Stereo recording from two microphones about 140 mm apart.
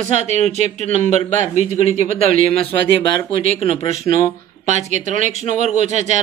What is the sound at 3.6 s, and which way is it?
Speech, 40° left (ahead or behind).